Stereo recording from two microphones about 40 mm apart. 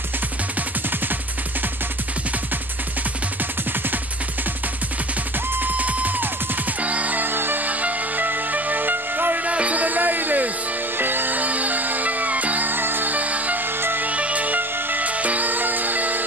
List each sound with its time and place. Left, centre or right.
5.6 s music: right
7.2 s music: right
7.6 s music: right
9.4 s music: right
11.0 s music: right
12.7 s music: right
13.1 s music: right
13.7 s music: right
14.0 s music: right
15.0 s music: right